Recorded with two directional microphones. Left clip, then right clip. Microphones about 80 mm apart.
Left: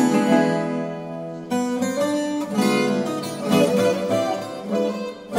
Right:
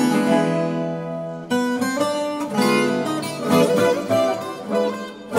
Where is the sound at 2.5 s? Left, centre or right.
Right.